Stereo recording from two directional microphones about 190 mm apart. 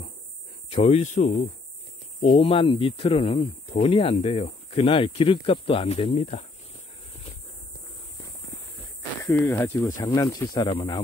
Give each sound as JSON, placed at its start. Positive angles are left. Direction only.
{"t": 0.7, "sound": "speech", "side_deg": 35}
{"t": 2.3, "sound": "speech", "side_deg": 30}
{"t": 9.2, "sound": "speech", "side_deg": 15}